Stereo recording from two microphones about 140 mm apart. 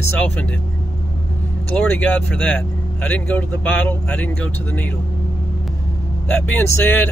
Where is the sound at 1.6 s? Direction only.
10° left (ahead or behind).